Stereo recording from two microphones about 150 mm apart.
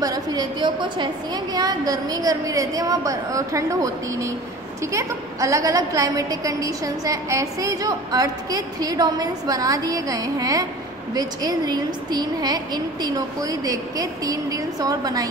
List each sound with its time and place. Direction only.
0.0 s a woman's voice: 25° right (ahead or behind)